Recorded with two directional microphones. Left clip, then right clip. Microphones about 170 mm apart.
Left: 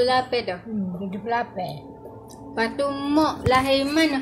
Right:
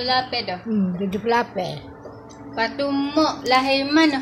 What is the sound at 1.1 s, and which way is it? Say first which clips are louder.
Speech: right 5 dB; 65° right (ahead or behind).